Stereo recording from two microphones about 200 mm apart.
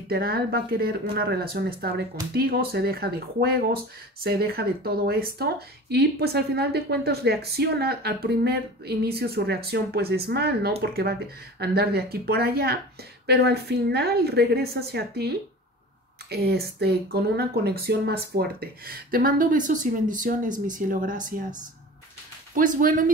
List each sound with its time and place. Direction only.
0.1 s speech: 50° right (ahead or behind)
22.5 s speech: 40° right (ahead or behind)